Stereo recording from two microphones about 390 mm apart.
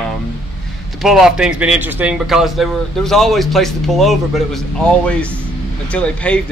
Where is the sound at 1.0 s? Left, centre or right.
Centre.